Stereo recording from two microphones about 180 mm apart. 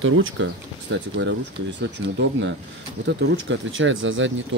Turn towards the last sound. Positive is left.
turn(degrees=-90)